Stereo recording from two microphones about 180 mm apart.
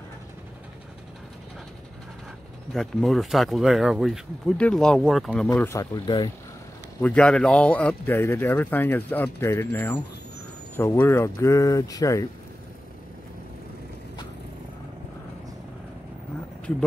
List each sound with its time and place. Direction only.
2.7 s speech: centre (ahead or behind)
5.5 s speech: 15° left (ahead or behind)
7.0 s speech: 5° left (ahead or behind)